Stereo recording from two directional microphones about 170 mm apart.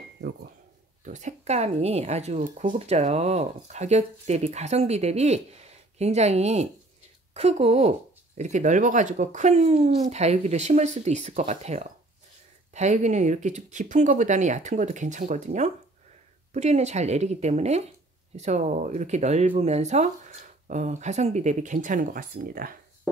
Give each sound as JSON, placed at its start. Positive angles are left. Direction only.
{"t": 1.0, "sound": "speech", "side_deg": -45}